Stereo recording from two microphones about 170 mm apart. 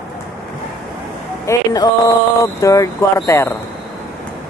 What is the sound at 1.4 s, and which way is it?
Speech, 20° left (ahead or behind).